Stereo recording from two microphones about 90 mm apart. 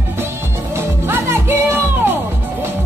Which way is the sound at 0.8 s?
25° right (ahead or behind).